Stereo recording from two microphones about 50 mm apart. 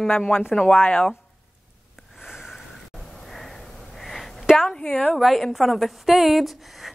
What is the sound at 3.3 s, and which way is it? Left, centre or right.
Sniff, centre.